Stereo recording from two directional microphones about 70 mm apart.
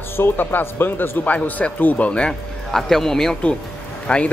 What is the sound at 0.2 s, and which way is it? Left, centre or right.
Speech, left.